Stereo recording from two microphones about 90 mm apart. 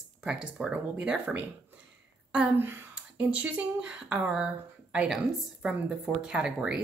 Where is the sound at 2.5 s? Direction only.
25° right (ahead or behind).